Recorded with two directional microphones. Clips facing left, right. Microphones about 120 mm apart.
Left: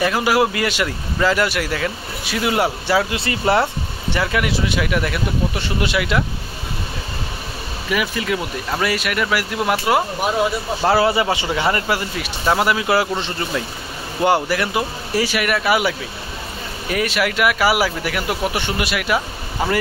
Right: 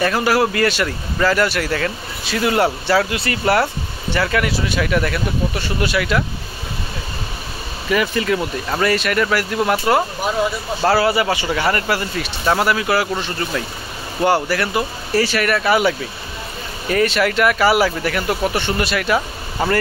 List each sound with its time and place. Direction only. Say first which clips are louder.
0.0 s speech: even; 10° left (ahead or behind)
7.9 s speech: right 3 dB; 5° left (ahead or behind)
16.9 s speech: right 4 dB; 10° left (ahead or behind)